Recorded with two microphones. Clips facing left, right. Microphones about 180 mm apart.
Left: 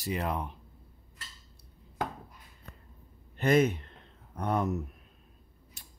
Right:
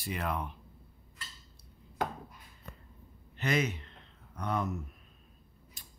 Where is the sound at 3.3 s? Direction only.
50° left (ahead or behind).